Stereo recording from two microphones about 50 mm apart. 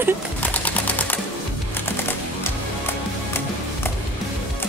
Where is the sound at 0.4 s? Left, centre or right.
Left.